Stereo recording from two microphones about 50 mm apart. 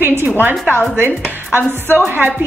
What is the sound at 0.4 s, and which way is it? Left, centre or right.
A woman's voice, right.